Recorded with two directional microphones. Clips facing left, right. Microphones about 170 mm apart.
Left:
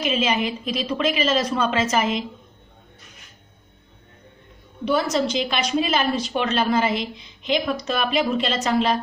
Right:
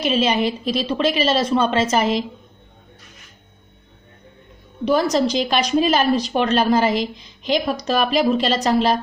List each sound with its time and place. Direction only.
0.0 s a woman's voice: 35° right (ahead or behind)
4.8 s a woman's voice: 40° right (ahead or behind)